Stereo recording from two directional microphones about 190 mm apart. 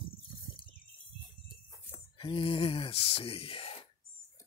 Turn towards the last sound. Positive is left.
turn(degrees=30)  # may be behind; listen again after turning